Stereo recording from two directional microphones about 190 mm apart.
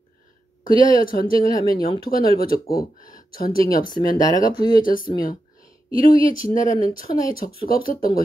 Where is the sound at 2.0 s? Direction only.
50° left (ahead or behind).